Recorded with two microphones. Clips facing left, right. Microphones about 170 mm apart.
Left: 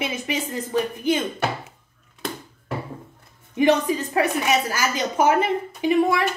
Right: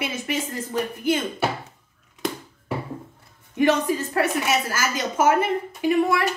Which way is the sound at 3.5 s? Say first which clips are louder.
Left 1 dB; 15° left (ahead or behind).